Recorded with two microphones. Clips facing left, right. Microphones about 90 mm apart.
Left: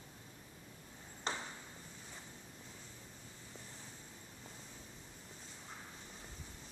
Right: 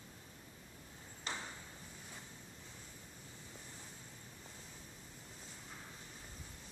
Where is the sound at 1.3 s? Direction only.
30° left (ahead or behind).